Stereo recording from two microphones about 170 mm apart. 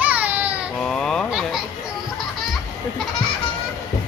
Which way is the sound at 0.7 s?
5° left (ahead or behind).